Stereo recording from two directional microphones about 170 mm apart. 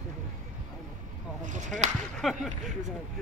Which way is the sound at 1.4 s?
50° right (ahead or behind).